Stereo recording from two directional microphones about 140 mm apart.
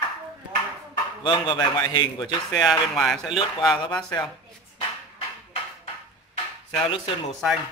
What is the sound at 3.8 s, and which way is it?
Speech, 25° left (ahead or behind).